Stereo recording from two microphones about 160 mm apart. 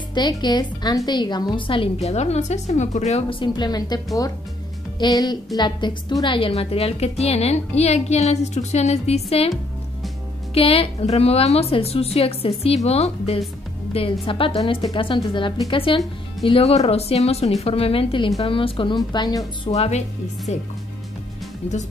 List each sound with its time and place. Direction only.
0.1 s a woman's voice: 25° left (ahead or behind)
10.5 s a woman's voice: 35° left (ahead or behind)
19.7 s a woman's voice: 40° left (ahead or behind)